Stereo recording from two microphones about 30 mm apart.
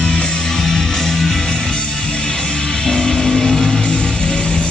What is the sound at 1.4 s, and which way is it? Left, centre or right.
Music, left.